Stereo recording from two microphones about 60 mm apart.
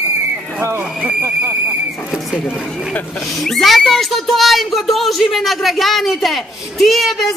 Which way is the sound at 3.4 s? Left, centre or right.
Centre.